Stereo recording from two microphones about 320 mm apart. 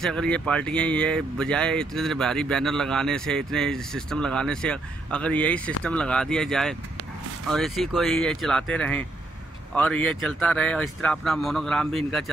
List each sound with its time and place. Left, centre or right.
0.0 s speech: centre